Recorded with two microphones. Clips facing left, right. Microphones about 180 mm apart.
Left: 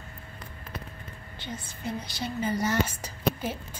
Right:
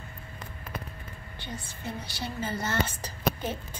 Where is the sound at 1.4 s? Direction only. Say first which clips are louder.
Left 2 dB; 20° left (ahead or behind).